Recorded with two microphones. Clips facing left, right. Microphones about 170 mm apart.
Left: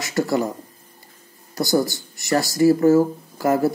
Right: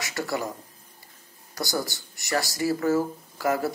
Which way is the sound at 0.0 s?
45° left (ahead or behind).